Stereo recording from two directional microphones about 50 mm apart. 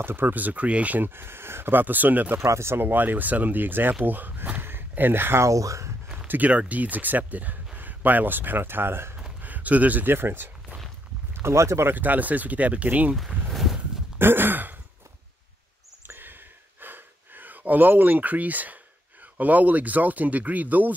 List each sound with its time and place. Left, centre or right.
0.0 s speech: right
1.0 s speech: right
2.4 s speech: right
2.9 s speech: right
5.4 s speech: right
6.1 s speech: right
9.4 s a sound: right
10.0 s speech: right
11.3 s speech: right
11.9 s speech: right
13.5 s walk: centre
14.1 s sigh: right
16.1 s a sound: right
19.3 s speech: right